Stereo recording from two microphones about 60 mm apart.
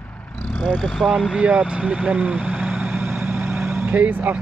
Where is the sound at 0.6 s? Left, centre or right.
Centre; by 3.9 s right.